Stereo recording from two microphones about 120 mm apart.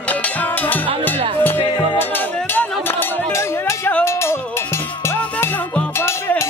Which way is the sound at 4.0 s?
20° left (ahead or behind).